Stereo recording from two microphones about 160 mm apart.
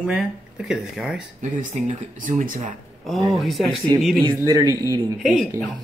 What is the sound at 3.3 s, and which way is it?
Speech, centre (ahead or behind).